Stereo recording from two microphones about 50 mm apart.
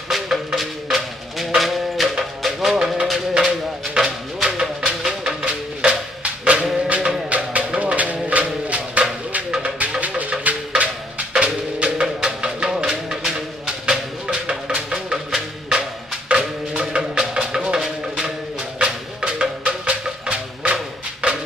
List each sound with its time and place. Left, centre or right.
0.1 s music: centre
5.8 s music: right
16.3 s music: right